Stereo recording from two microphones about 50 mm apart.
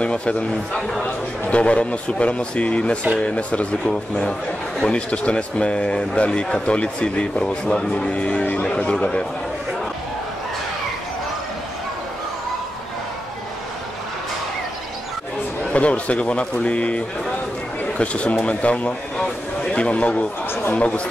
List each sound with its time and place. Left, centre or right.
0.0 s a sound: left
0.7 s speech: centre
1.0 s speech: left
15.6 s speech: left
19.1 s a sound: centre
20.7 s speech: left